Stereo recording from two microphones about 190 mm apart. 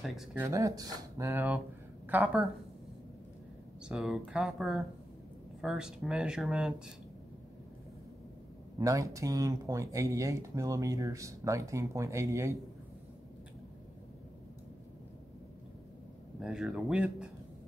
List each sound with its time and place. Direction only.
0.0 s speech: 5° right (ahead or behind)
0.5 s a woman's voice: 15° right (ahead or behind)
3.9 s speech: 5° right (ahead or behind)
8.7 s speech: 15° right (ahead or behind)
16.3 s speech: centre (ahead or behind)